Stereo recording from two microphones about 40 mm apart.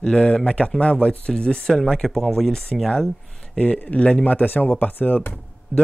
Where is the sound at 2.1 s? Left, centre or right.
Centre.